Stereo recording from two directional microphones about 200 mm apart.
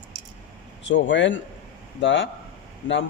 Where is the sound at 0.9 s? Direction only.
65° left (ahead or behind).